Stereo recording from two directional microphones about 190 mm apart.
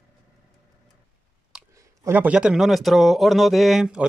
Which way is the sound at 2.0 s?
10° right (ahead or behind).